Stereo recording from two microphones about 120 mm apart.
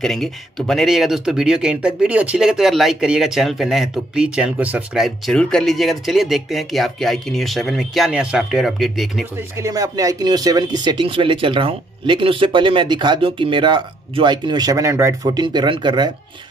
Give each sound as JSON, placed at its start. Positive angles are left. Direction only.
{"t": 0.0, "sound": "speech", "side_deg": 5}
{"t": 5.0, "sound": "speech", "side_deg": 5}
{"t": 9.6, "sound": "speech", "side_deg": -30}